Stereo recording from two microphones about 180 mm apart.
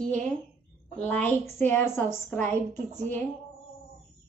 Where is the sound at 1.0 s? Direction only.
10° left (ahead or behind).